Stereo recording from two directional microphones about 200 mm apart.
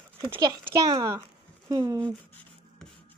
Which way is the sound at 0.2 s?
20° right (ahead or behind).